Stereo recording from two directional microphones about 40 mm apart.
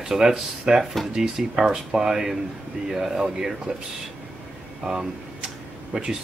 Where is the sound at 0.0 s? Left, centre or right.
Centre.